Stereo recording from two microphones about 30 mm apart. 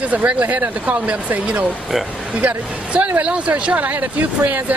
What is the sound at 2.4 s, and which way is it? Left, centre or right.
Speech, right.